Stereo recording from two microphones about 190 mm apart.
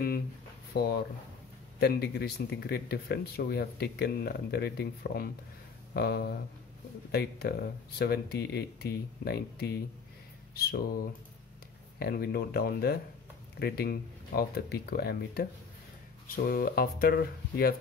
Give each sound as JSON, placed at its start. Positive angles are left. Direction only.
{"t": 0.7, "sound": "speech", "side_deg": 60}